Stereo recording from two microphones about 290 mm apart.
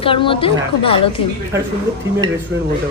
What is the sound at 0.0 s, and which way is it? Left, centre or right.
A man's voice, centre.